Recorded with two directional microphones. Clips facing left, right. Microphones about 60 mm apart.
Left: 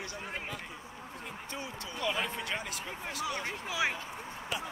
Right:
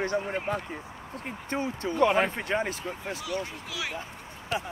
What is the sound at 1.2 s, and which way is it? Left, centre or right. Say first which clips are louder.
Speech: right 11 dB; right.